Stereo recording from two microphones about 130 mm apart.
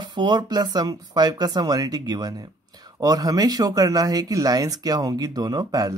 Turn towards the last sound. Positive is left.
turn(degrees=-30)  # may be behind; listen again after turning